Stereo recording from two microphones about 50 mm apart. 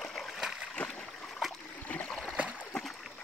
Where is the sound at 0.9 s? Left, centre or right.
Centre.